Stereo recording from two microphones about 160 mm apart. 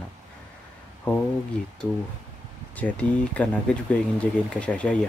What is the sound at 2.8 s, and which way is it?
Speech, 10° left (ahead or behind).